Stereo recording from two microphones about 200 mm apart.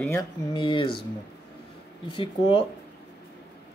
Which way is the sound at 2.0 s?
25° left (ahead or behind).